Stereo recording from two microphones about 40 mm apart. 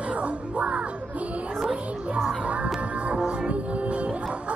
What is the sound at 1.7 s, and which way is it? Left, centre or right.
Cat, right.